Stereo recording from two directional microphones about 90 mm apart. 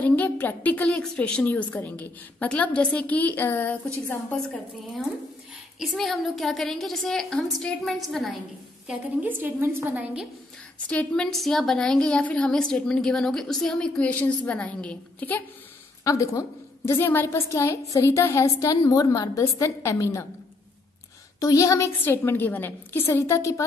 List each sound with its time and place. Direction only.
0.0 s a woman's voice: 20° left (ahead or behind)
4.3 s a woman's voice: 5° left (ahead or behind)
9.2 s a woman's voice: 25° right (ahead or behind)
10.9 s a woman's voice: 15° left (ahead or behind)
11.3 s a woman's voice: 5° left (ahead or behind)
16.0 s a woman's voice: 35° left (ahead or behind)
17.5 s a woman's voice: 35° left (ahead or behind)
21.4 s a woman's voice: 40° left (ahead or behind)